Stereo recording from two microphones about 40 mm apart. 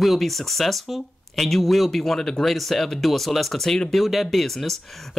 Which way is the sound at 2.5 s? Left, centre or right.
Centre.